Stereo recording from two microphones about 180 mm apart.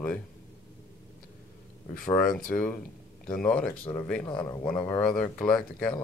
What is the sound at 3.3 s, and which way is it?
Speech, 5° left (ahead or behind).